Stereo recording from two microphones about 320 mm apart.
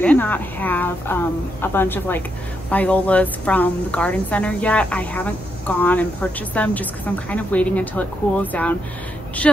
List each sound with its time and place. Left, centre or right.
0.0 s a woman's voice: centre